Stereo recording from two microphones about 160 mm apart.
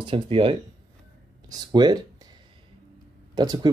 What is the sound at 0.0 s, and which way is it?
Speech, 35° right (ahead or behind).